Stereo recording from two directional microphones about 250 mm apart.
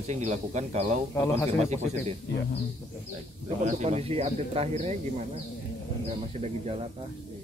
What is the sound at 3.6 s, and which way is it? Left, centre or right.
Speech, right.